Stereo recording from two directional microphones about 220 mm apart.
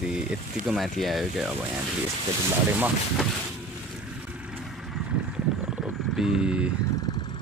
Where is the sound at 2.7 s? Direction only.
5° right (ahead or behind).